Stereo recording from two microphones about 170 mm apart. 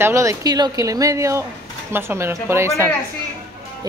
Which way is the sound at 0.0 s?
15° right (ahead or behind).